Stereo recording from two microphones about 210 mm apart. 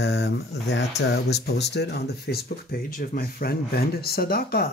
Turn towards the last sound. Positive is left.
turn(degrees=45)  # may be behind; listen again after turning